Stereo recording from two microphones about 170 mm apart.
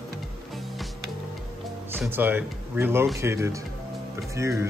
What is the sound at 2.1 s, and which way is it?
Speech, 10° right (ahead or behind).